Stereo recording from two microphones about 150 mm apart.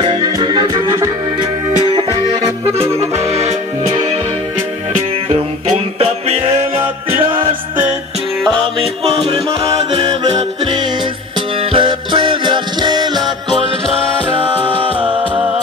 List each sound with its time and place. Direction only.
0.0 s music: 35° right (ahead or behind)
3.0 s music: 45° right (ahead or behind)
5.9 s music: 40° right (ahead or behind)
8.7 s music: 40° right (ahead or behind)
11.7 s music: 35° right (ahead or behind)